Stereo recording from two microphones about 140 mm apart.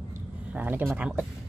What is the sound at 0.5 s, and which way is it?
Speech, 15° right (ahead or behind).